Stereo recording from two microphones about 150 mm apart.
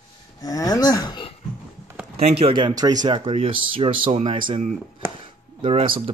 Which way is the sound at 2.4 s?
30° right (ahead or behind).